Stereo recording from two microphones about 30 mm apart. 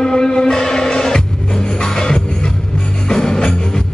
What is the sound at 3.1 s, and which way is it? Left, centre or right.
Music, left.